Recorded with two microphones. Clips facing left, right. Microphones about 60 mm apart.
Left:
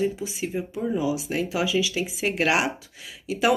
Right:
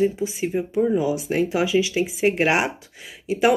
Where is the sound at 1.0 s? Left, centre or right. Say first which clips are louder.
Right 4 dB; right.